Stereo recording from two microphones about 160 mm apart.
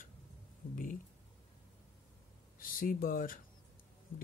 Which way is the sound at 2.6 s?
60° left (ahead or behind).